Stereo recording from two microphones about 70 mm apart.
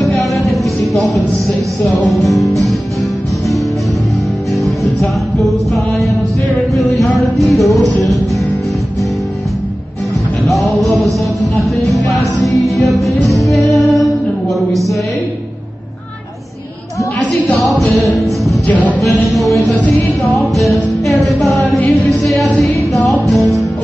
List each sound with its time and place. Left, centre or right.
0.2 s music: centre
4.6 s music: centre
6.8 s music: centre
10.4 s music: centre
14.7 s a sound: centre
17.7 s music: centre
18.7 s music: left
18.9 s music: centre